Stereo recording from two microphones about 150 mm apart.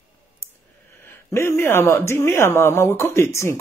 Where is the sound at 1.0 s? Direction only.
15° left (ahead or behind).